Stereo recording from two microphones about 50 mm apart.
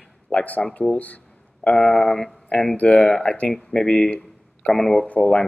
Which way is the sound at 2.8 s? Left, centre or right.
Left.